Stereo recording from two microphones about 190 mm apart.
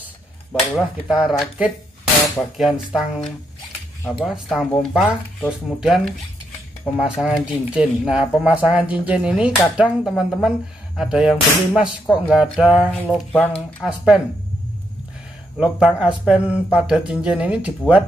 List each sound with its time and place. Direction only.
1.0 s speech: 5° right (ahead or behind)
13.0 s speech: 10° left (ahead or behind)
13.8 s speech: 5° right (ahead or behind)
15.5 s speech: 5° right (ahead or behind)